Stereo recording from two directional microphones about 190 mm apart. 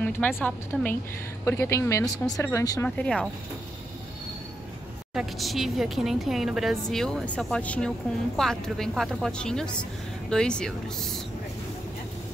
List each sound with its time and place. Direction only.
0.0 s speech: 10° left (ahead or behind)
3.0 s a woman's voice: 5° left (ahead or behind)
5.1 s a woman's voice: centre (ahead or behind)